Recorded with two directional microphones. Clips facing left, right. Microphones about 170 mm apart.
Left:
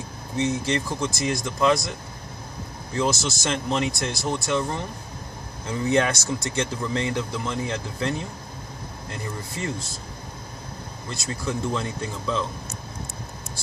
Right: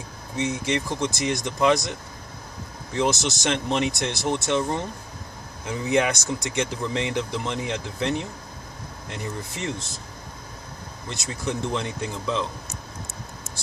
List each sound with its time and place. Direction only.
0.4 s speech: 15° right (ahead or behind)
2.9 s speech: 20° right (ahead or behind)
11.1 s speech: 20° right (ahead or behind)